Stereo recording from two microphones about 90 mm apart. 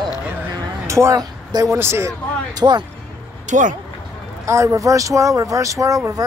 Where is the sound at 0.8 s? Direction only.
35° right (ahead or behind).